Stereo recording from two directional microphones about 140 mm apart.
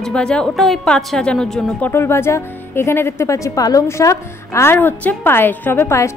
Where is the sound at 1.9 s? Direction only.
15° left (ahead or behind).